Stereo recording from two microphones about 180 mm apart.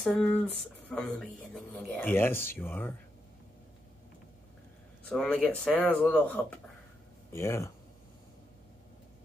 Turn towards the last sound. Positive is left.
turn(degrees=15)  # may be behind; listen again after turning